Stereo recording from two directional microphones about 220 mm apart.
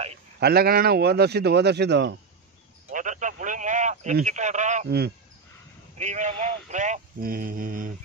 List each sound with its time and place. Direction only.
0.4 s speech: 45° right (ahead or behind)
2.9 s speech: 35° right (ahead or behind)
4.8 s speech: 45° right (ahead or behind)
5.9 s speech: 35° right (ahead or behind)